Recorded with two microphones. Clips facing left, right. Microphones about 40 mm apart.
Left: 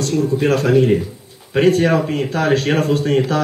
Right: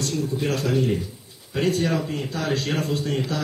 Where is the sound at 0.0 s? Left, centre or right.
Left.